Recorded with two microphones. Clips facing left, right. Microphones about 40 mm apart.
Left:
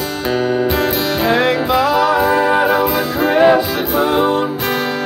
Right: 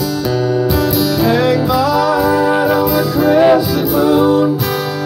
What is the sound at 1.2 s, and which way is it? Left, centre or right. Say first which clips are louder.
Music: even; left.